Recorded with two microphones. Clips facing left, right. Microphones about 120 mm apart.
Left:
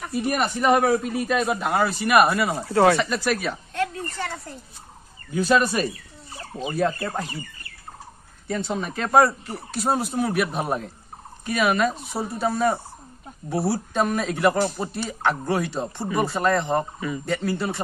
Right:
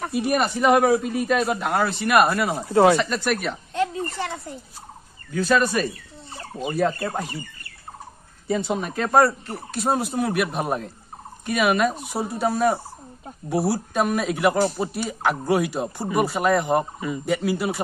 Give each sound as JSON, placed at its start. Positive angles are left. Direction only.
{"t": 0.1, "sound": "a man's voice", "side_deg": 0}
{"t": 2.6, "sound": "speech", "side_deg": -20}
{"t": 3.0, "sound": "a man's voice", "side_deg": 0}
{"t": 3.7, "sound": "a sound", "side_deg": -20}
{"t": 5.3, "sound": "speech", "side_deg": 15}
{"t": 6.5, "sound": "a man's voice", "side_deg": 0}
{"t": 8.5, "sound": "a man's voice", "side_deg": -10}